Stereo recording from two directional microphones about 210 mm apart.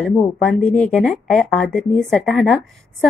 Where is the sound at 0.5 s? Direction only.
5° left (ahead or behind).